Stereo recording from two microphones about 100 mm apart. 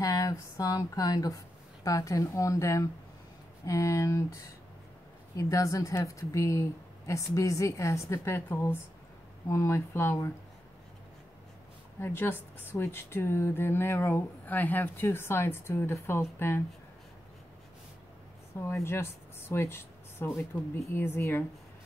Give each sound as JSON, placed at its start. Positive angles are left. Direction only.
{"t": 0.0, "sound": "a woman's voice", "side_deg": 35}
{"t": 5.3, "sound": "a woman's voice", "side_deg": 30}
{"t": 12.0, "sound": "speech", "side_deg": 20}
{"t": 18.6, "sound": "speech", "side_deg": 25}